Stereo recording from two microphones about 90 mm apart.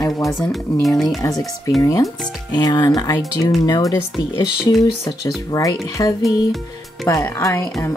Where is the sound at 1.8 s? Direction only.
40° left (ahead or behind).